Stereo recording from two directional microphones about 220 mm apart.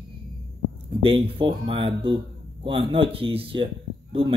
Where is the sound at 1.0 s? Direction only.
25° right (ahead or behind).